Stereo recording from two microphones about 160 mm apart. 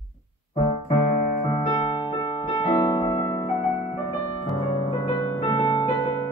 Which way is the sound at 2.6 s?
30° left (ahead or behind).